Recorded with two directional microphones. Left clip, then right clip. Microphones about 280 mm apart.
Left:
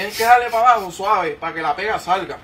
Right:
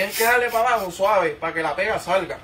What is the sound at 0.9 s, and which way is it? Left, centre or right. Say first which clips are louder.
Speech: even; centre.